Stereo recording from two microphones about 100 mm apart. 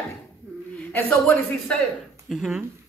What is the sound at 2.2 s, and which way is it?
Speech, 5° right (ahead or behind).